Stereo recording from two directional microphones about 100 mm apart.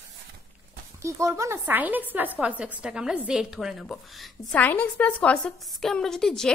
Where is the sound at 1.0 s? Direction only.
30° right (ahead or behind).